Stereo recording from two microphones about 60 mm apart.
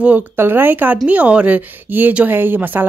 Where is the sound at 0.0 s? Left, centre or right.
Right.